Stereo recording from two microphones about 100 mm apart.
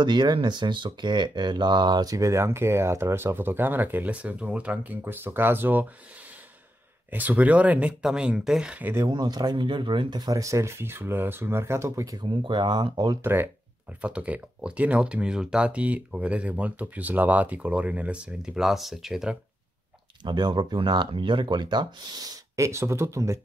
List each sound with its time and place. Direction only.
0.0 s speech: 50° right (ahead or behind); by 5.9 s 20° right (ahead or behind)
7.1 s speech: 15° right (ahead or behind)
9.1 s speech: 45° right (ahead or behind)
12.4 s speech: 50° right (ahead or behind)
13.2 s speech: 20° right (ahead or behind); by 19.3 s 5° right (ahead or behind)
20.2 s speech: 45° right (ahead or behind)
22.6 s speech: 30° right (ahead or behind)